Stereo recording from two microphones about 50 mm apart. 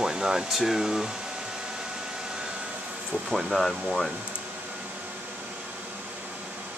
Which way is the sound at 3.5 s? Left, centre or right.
Centre.